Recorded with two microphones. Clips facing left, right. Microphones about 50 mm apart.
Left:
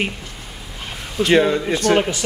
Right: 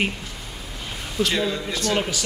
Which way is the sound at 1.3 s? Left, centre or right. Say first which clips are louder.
Left 9 dB; left.